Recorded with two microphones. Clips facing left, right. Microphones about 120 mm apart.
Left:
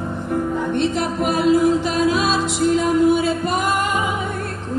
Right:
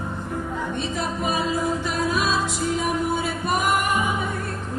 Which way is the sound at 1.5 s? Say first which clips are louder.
Left 8 dB; 90° left.